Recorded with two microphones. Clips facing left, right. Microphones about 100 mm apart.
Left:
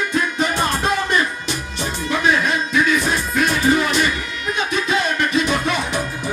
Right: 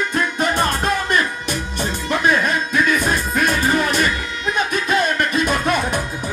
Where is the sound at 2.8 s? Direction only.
50° right (ahead or behind).